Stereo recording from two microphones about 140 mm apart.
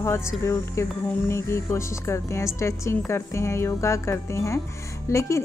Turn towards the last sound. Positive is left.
turn(degrees=20)  # may be behind; listen again after turning